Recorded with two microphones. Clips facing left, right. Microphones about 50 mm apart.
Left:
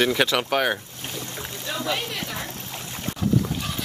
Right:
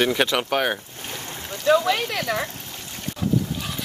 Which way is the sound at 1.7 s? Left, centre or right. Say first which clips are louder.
Right 9 dB; right.